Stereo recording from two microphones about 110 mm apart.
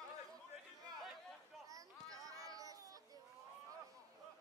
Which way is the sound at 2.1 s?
30° right (ahead or behind).